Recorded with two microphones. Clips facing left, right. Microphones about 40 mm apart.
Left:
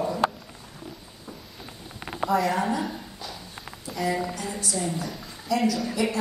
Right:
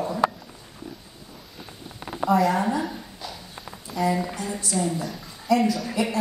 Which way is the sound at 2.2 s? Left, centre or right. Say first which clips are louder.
Right 3 dB; centre.